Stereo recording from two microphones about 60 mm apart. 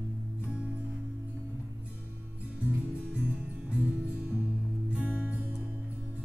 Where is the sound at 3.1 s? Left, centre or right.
Centre.